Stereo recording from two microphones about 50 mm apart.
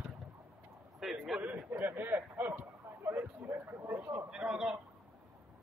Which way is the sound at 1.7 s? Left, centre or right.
Right.